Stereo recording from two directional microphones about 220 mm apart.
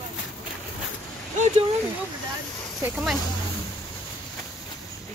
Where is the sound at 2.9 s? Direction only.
Centre (ahead or behind).